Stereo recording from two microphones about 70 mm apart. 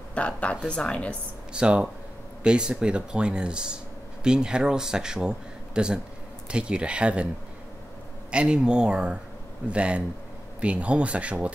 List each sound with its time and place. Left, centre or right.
0.1 s speech: centre
1.5 s speech: centre
8.3 s speech: centre